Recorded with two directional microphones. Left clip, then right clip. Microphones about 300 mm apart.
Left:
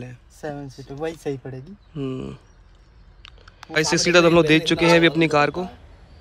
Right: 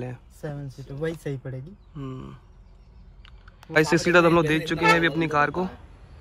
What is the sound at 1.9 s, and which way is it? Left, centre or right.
Speech, centre.